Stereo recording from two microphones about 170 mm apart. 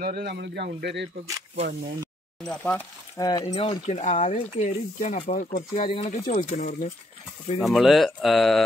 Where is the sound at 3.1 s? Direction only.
20° left (ahead or behind).